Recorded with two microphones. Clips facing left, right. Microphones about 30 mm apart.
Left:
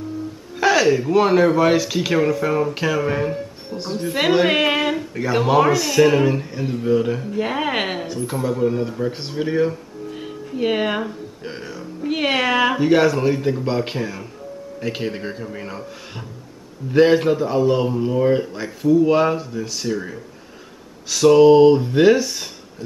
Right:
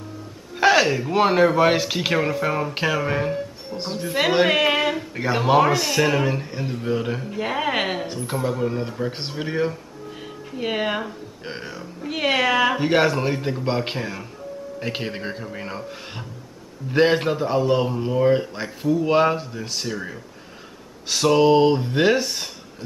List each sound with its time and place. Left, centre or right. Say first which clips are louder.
0.6 s a sound: left 1 dB; centre
1.1 s speech: even; centre
4.5 s a sound: left 1 dB; centre
5.1 s speech: left 2 dB; centre
5.4 s speech: left 1 dB; centre
7.3 s speech: even; centre
8.2 s speech: left 5 dB; centre
10.5 s speech: left 4 dB; centre
11.4 s speech: left 1 dB; centre
12.0 s speech: left 1 dB; centre
12.7 s speech: left 3 dB; centre
16.9 s speech: left 4 dB; centre